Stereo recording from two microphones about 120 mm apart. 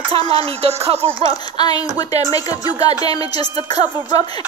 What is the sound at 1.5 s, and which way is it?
Speech, 35° left (ahead or behind).